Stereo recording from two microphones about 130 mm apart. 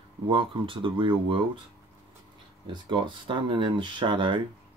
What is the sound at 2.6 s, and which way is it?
Speech, 40° right (ahead or behind).